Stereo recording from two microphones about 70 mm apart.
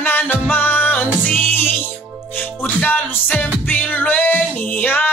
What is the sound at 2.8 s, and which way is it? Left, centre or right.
Music, left.